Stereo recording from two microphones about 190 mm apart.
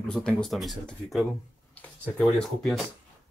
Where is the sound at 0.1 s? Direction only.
5° left (ahead or behind).